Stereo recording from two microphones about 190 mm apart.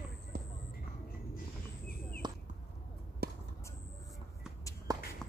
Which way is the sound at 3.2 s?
55° right (ahead or behind).